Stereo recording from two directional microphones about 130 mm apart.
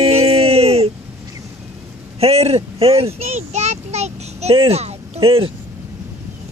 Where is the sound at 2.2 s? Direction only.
50° right (ahead or behind).